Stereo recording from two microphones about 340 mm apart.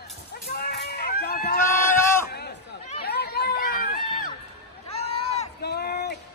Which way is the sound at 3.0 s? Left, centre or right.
Left.